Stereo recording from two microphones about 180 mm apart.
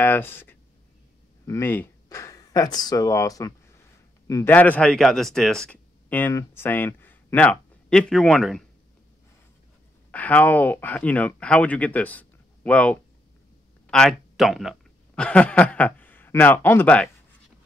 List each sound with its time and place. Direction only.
0.0 s speech: 10° left (ahead or behind)
10.1 s a man's voice: 10° left (ahead or behind)